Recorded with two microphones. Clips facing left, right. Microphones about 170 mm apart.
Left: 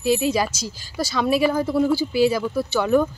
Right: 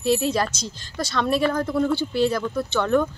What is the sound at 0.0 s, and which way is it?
Speech, centre (ahead or behind).